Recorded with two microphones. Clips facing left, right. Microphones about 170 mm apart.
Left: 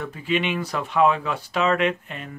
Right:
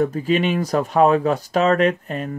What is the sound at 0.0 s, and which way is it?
Speech, 40° right (ahead or behind).